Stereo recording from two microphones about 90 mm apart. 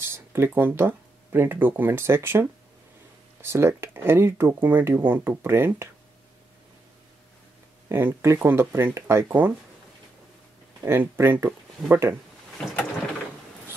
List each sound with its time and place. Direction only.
0.0 s speech: 25° right (ahead or behind)
7.9 s speech: 25° right (ahead or behind)
10.8 s speech: 25° right (ahead or behind)